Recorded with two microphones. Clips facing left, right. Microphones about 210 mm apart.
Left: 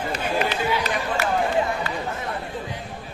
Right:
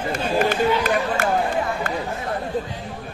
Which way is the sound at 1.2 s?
50° right (ahead or behind).